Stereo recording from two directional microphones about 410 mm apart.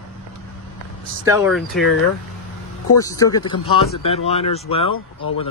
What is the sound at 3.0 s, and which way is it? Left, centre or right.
Speech, centre.